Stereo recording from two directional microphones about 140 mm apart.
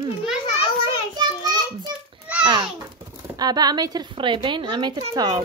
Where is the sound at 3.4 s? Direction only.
30° right (ahead or behind).